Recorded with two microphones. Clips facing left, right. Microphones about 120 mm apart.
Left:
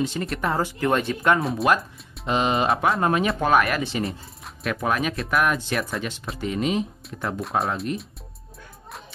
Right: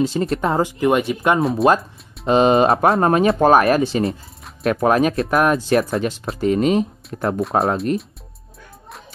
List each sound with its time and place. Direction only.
0.0 s speech: 30° right (ahead or behind); by 1.4 s 15° right (ahead or behind)
1.6 s speech: 30° right (ahead or behind)
7.2 s speech: 55° right (ahead or behind)
7.5 s speech: 30° right (ahead or behind)